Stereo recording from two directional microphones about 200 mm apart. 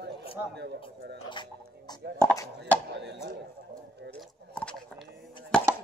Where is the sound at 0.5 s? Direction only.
60° right (ahead or behind).